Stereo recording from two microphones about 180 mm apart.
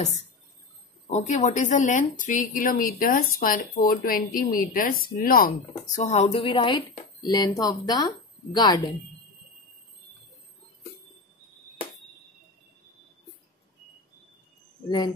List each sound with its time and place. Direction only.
1.1 s a woman's voice: 40° left (ahead or behind); by 8.9 s 20° left (ahead or behind)